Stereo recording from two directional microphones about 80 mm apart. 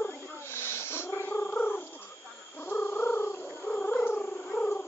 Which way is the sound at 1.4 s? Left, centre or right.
Centre.